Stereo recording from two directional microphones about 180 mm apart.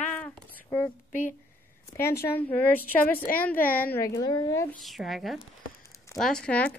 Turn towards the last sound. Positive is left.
turn(degrees=5)  # may be behind; listen again after turning